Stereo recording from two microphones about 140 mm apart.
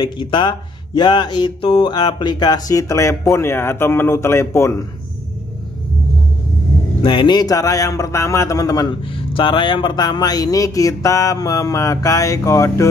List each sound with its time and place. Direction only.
0.0 s speech: 35° left (ahead or behind); by 4.8 s 20° left (ahead or behind)
7.0 s speech: 35° left (ahead or behind)
9.1 s speech: 40° left (ahead or behind); by 12.8 s 20° left (ahead or behind)